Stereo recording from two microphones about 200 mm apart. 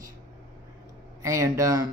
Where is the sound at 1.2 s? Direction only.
15° right (ahead or behind).